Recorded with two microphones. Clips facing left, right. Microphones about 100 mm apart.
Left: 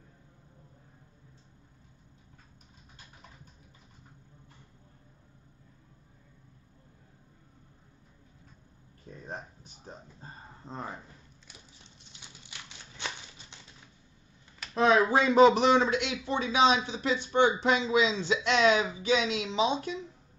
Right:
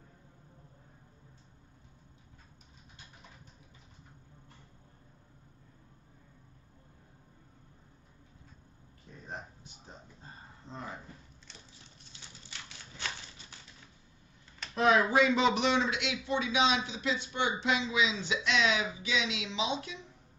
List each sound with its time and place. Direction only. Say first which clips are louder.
9.8 s speech: left 5 dB; 40° left (ahead or behind)
12.1 s a sound: even; 20° left (ahead or behind)
14.7 s speech: left 3 dB; 30° left (ahead or behind)